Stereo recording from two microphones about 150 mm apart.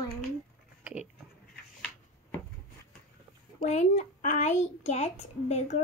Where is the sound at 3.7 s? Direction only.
50° left (ahead or behind).